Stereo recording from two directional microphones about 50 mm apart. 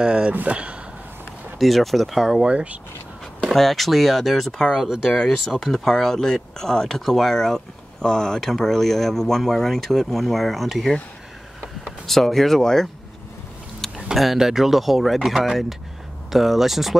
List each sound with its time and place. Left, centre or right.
0.0 s speech: right
1.6 s speech: centre
2.4 s speech: right
3.5 s speech: centre
12.1 s speech: centre
13.7 s a sound: centre
14.1 s speech: centre